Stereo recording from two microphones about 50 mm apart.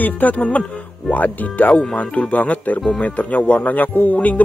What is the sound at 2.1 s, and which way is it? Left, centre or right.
Speech, left.